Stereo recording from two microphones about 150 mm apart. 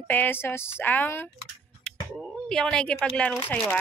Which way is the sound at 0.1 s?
15° left (ahead or behind).